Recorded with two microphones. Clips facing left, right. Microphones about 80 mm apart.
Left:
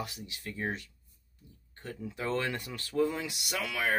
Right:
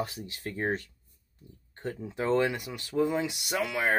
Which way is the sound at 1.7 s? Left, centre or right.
Right.